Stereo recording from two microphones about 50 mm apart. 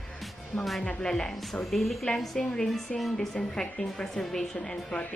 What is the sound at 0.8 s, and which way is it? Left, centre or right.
A woman's voice, left.